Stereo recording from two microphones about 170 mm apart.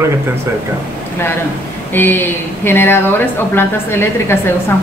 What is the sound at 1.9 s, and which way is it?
Speech, 10° left (ahead or behind).